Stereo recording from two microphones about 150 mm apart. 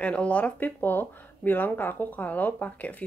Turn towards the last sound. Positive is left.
turn(degrees=10)  # may be behind; listen again after turning